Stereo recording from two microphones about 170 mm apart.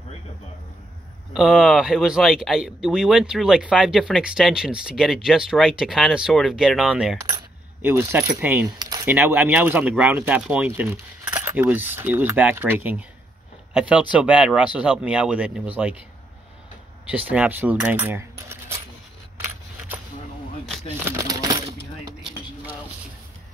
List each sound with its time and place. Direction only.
1.3 s speech: centre (ahead or behind)
17.0 s speech: 10° right (ahead or behind)
21.0 s a sound: 20° right (ahead or behind)